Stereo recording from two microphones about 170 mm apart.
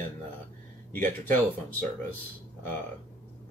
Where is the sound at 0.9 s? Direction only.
10° left (ahead or behind).